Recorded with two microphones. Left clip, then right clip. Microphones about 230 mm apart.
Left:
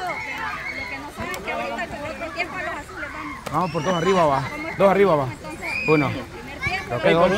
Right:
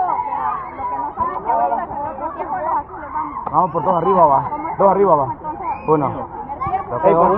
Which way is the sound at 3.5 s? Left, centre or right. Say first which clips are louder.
Right 7 dB; left.